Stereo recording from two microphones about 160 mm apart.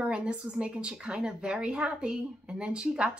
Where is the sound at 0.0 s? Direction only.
5° right (ahead or behind).